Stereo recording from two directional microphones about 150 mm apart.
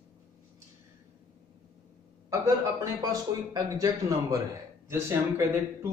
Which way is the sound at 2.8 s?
25° right (ahead or behind).